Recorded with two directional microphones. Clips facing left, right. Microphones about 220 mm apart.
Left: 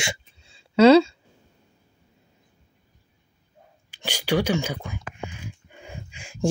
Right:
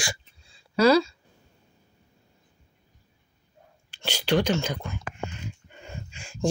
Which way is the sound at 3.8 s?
10° left (ahead or behind).